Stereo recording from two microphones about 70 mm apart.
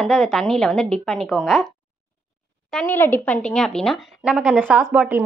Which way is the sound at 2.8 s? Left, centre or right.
Left.